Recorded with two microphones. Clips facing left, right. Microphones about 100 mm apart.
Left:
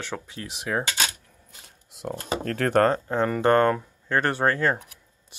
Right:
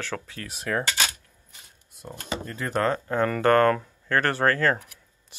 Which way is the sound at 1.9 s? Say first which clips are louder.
Left 9 dB; 80° left.